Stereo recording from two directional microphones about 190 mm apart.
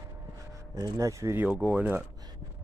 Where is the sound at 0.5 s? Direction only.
15° right (ahead or behind).